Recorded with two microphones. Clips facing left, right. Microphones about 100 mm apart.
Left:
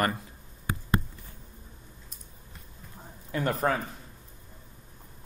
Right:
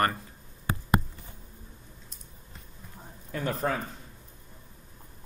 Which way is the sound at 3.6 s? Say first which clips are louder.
Left 2 dB; 55° left (ahead or behind).